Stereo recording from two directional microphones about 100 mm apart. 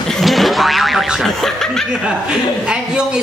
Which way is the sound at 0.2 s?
Centre (ahead or behind).